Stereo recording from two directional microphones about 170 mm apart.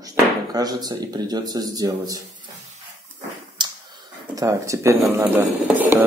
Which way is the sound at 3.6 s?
25° right (ahead or behind).